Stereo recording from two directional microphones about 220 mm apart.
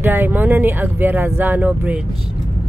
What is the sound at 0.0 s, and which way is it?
Speech, 10° right (ahead or behind).